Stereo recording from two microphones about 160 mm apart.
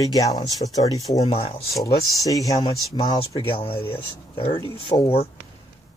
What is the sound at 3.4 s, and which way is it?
Speech, 35° left (ahead or behind).